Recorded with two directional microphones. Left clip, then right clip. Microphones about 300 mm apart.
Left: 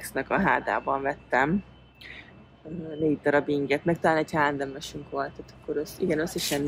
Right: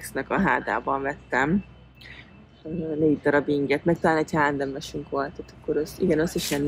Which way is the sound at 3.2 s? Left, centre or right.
Centre.